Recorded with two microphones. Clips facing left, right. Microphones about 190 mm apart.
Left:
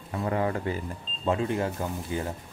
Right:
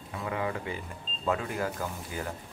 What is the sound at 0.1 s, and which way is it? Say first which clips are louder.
Speech: left 5 dB; 45° left (ahead or behind).